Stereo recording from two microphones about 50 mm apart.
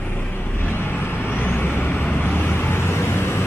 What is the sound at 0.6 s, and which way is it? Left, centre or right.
Vehicle, left.